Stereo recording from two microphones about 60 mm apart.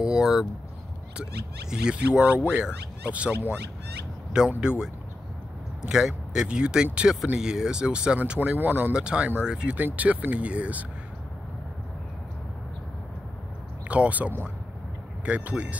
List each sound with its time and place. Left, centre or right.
0.0 s a sound: centre
1.7 s speech: centre
4.6 s speech: centre
8.5 s speech: right
8.9 s speech: centre
9.8 s speech: right
13.8 s speech: right